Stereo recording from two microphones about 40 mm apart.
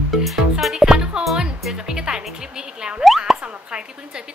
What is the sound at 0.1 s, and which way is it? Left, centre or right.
Music, centre.